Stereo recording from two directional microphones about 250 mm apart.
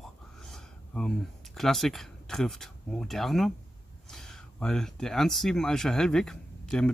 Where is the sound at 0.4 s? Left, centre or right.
Centre.